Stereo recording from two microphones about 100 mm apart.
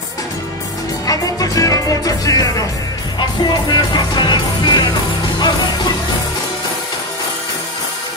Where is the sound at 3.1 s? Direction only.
45° left (ahead or behind).